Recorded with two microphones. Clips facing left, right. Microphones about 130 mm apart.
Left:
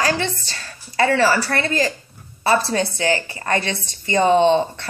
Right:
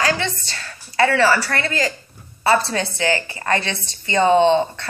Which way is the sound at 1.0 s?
35° left (ahead or behind).